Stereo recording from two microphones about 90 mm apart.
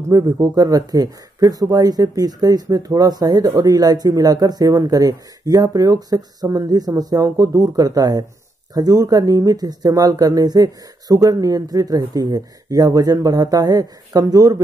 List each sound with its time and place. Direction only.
0.1 s speech: 45° right (ahead or behind)